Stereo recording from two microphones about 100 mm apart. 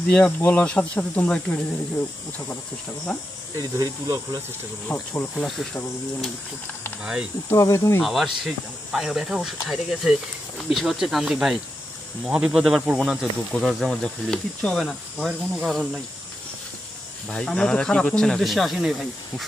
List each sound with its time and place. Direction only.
0.1 s speech: 20° left (ahead or behind)
3.1 s speech: 5° left (ahead or behind)
3.7 s speech: 35° right (ahead or behind)
5.1 s speech: 20° left (ahead or behind)
5.4 s speech: centre (ahead or behind)
7.4 s speech: 30° left (ahead or behind)
8.0 s speech: centre (ahead or behind)
17.3 s speech: 10° left (ahead or behind)